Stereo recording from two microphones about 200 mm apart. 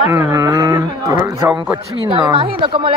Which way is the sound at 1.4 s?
5° right (ahead or behind).